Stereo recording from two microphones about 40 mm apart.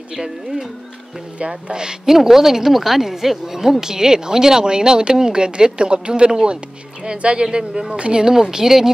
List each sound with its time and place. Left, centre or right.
0.1 s a woman's voice: centre
2.0 s speech: centre; by 7.4 s right
7.5 s speech: centre